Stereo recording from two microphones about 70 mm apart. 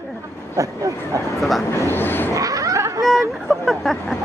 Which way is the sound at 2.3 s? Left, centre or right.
Right.